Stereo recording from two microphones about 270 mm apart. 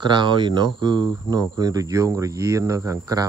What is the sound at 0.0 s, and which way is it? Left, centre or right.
Speech, centre.